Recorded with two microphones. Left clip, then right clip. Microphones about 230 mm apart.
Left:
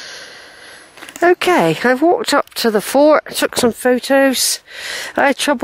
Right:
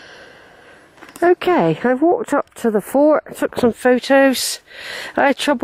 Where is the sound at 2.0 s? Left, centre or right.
Centre.